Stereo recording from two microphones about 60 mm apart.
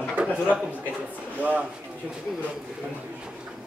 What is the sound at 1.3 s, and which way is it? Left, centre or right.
Speech, right.